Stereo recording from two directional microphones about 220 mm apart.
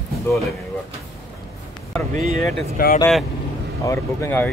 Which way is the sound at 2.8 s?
40° left (ahead or behind).